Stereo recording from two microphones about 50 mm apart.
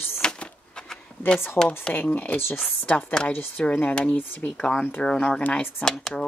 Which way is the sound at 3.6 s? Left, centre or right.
Left.